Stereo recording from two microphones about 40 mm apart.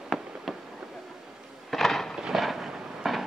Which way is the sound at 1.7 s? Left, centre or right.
Centre.